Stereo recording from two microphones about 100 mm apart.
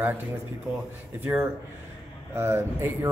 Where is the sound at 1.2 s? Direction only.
20° right (ahead or behind).